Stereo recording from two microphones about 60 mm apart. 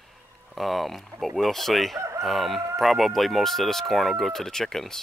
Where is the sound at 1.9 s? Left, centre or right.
Right.